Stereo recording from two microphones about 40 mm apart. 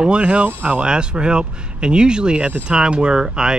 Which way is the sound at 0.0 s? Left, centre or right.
Right.